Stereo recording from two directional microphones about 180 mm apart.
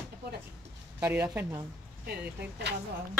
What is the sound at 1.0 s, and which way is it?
Speech, 10° right (ahead or behind).